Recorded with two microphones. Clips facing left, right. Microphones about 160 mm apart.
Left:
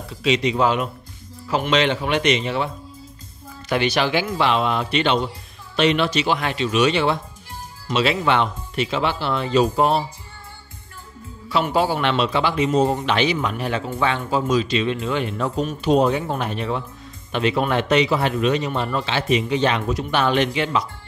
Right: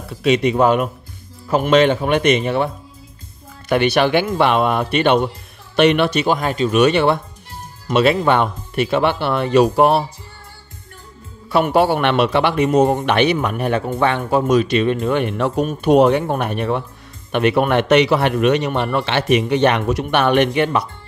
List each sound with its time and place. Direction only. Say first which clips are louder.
0.2 s a man's voice: right 4 dB; 55° right (ahead or behind)
11.4 s a man's voice: right 5 dB; 55° right (ahead or behind)